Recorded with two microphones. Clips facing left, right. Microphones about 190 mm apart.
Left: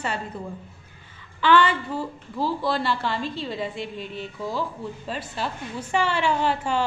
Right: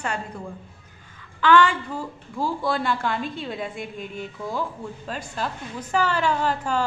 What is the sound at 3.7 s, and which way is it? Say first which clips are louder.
Speech: left 1 dB; 50° right (ahead or behind).